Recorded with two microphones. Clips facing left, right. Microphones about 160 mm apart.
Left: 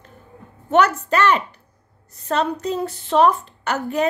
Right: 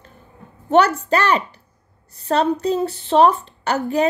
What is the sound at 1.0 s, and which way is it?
A woman's voice, 35° right (ahead or behind).